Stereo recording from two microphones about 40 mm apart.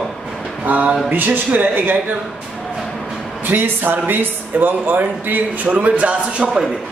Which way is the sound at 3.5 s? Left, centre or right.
Right.